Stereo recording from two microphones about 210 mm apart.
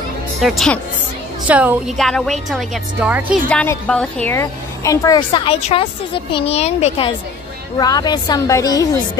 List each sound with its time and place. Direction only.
0.4 s a woman's voice: centre (ahead or behind)
3.4 s a woman's voice: 5° left (ahead or behind)